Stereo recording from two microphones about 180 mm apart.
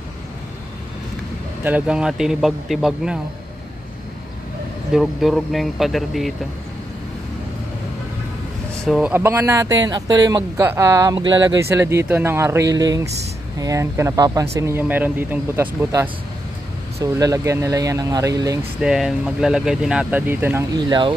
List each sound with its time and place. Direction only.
1.6 s speech: 5° right (ahead or behind)
4.9 s speech: centre (ahead or behind)
8.8 s speech: 5° right (ahead or behind)
18.8 s speech: 5° right (ahead or behind)
20.7 s speech: 25° right (ahead or behind)